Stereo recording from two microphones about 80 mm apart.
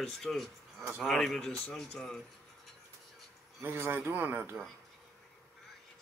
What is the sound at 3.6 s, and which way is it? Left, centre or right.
Speech, right.